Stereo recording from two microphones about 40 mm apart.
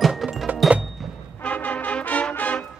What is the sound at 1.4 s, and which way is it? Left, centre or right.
Brass instrument, left.